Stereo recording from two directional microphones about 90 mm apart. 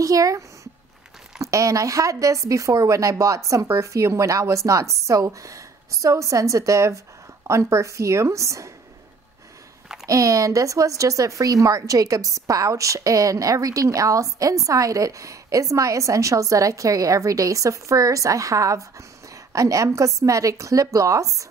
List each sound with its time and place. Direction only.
0.0 s a woman's voice: 40° right (ahead or behind)
10.0 s a woman's voice: 40° right (ahead or behind)